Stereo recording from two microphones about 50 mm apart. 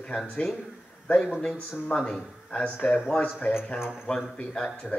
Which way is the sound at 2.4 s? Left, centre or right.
Centre.